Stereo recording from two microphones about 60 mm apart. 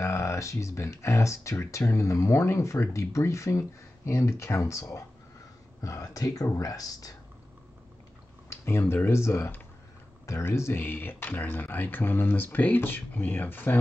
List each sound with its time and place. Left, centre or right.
0.0 s speech: left
8.5 s speech: left